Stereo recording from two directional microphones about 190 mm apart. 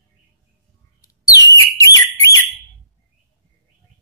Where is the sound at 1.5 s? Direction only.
15° left (ahead or behind).